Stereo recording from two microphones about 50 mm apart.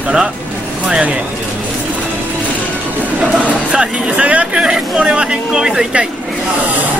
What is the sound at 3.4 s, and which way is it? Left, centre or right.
Speech, right.